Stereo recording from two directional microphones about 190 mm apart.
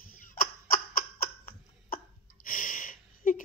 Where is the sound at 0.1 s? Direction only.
45° left (ahead or behind).